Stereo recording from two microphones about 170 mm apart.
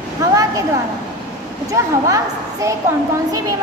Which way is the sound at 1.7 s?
20° right (ahead or behind).